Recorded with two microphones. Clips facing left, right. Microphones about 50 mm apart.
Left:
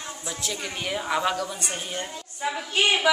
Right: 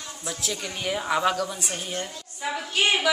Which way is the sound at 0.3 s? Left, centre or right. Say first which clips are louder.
Right 1 dB; centre.